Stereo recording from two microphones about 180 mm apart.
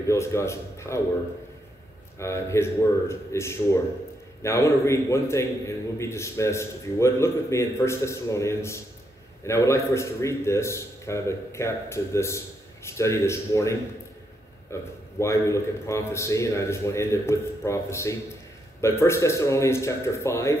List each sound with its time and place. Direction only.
0.0 s a man's voice: 15° left (ahead or behind)
2.1 s a man's voice: 15° left (ahead or behind)